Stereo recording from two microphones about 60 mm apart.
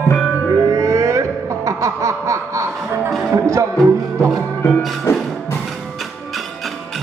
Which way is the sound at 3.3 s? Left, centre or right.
Right.